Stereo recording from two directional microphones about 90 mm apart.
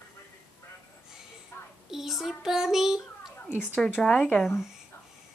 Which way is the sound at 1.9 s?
5° right (ahead or behind).